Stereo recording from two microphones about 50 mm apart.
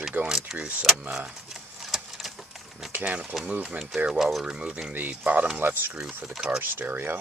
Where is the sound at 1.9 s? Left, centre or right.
Centre.